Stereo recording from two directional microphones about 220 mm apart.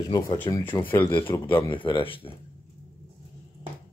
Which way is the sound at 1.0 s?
20° left (ahead or behind).